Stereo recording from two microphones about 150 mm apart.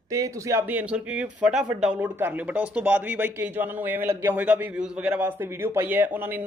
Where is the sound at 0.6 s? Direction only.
10° right (ahead or behind).